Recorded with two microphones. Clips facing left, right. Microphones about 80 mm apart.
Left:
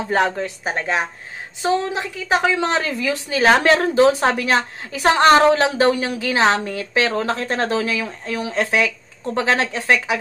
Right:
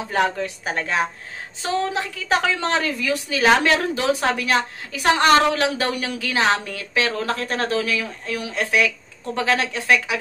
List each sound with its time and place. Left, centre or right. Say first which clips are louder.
0.1 s a woman's voice: left 2 dB; left